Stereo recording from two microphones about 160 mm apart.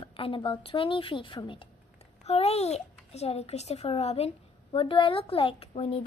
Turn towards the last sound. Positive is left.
turn(degrees=40)  # may be behind; listen again after turning